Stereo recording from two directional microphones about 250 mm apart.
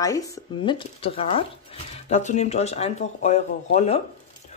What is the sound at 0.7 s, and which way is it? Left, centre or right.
Speech, left.